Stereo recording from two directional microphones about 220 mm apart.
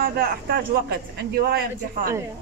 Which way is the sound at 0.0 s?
45° right (ahead or behind).